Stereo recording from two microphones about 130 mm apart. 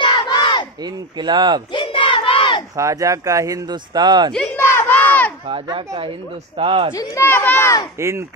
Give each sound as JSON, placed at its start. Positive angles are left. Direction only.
{"t": 0.0, "sound": "crowd", "side_deg": 35}
{"t": 0.8, "sound": "speech", "side_deg": -35}
{"t": 1.7, "sound": "crowd", "side_deg": 40}
{"t": 2.7, "sound": "speech", "side_deg": -25}
{"t": 4.3, "sound": "a sound", "side_deg": 5}
{"t": 4.6, "sound": "crowd", "side_deg": 15}
{"t": 5.5, "sound": "speech", "side_deg": -45}
{"t": 6.9, "sound": "speech", "side_deg": 20}
{"t": 8.0, "sound": "speech", "side_deg": -20}